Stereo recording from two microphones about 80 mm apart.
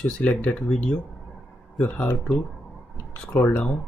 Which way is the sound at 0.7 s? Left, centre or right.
Centre.